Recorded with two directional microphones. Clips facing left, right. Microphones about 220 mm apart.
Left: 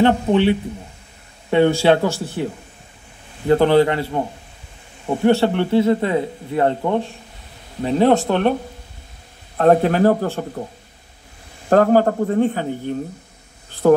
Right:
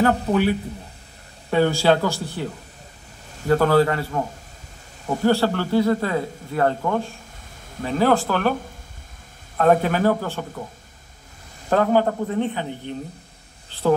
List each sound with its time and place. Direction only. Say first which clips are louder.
0.0 s speech: left 4 dB; 25° left (ahead or behind)
3.4 s speech: left 3 dB; 25° left (ahead or behind)
9.6 s speech: left 4 dB; 35° left (ahead or behind)
11.7 s a man's voice: left 5 dB; 45° left (ahead or behind)
13.8 s a man's voice: left 6 dB; 55° left (ahead or behind)